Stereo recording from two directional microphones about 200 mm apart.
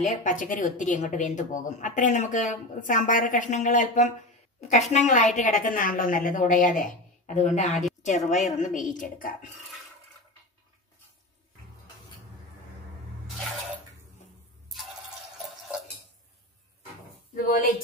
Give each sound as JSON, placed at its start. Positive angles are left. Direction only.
{"t": 0.0, "sound": "speech", "side_deg": 35}
{"t": 17.4, "sound": "a woman's voice", "side_deg": 45}